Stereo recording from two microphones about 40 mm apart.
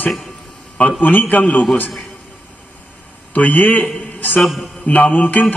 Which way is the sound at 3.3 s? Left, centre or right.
Left.